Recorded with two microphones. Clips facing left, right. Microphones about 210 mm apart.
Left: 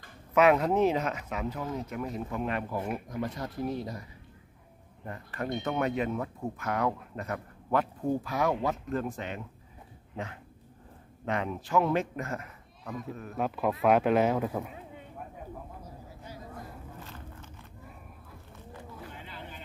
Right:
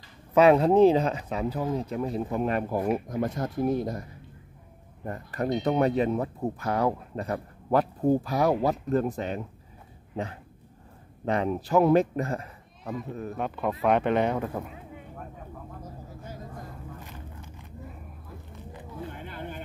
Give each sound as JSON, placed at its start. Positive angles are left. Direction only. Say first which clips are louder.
{"t": 0.3, "sound": "speech", "louder": "right 5 dB", "side_deg": -30}
{"t": 11.2, "sound": "speech", "louder": "right 6 dB", "side_deg": -35}
{"t": 13.4, "sound": "speech", "louder": "left 1 dB", "side_deg": 0}
{"t": 17.0, "sound": "a sound", "louder": "right 2 dB", "side_deg": -15}
{"t": 19.1, "sound": "vehicle", "louder": "right 7 dB", "side_deg": -50}